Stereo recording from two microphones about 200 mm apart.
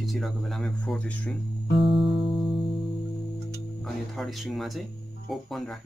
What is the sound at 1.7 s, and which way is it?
Music, 25° left (ahead or behind).